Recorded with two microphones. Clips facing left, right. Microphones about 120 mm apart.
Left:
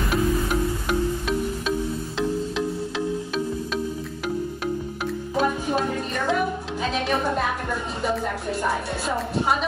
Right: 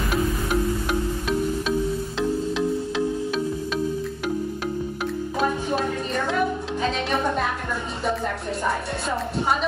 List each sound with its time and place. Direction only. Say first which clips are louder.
0.1 s music: left 1 dB; centre (ahead or behind)
5.0 s music: left 1 dB; centre (ahead or behind)
8.6 s music: right 1 dB; centre (ahead or behind)